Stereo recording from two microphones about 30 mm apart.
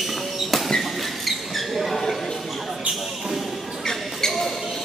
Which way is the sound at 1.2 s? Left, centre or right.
Centre.